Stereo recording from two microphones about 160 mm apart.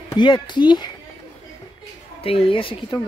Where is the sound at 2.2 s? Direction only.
35° left (ahead or behind).